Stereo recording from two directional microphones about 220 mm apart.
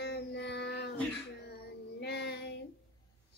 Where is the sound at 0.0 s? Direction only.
50° left (ahead or behind).